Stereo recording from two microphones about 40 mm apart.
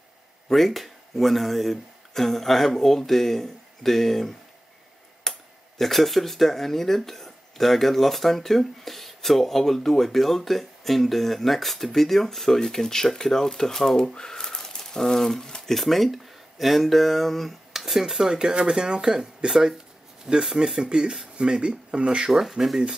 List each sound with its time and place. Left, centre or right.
0.5 s speech: centre
5.2 s cutlery: centre
5.8 s speech: centre
15.7 s speech: centre; by 22.3 s right
22.3 s speech: centre